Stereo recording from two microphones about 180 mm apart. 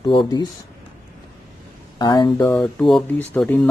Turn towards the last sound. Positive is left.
turn(degrees=10)  # may be behind; listen again after turning